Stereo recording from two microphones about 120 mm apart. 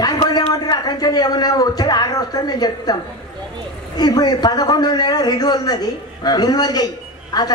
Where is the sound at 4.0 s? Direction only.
35° left (ahead or behind).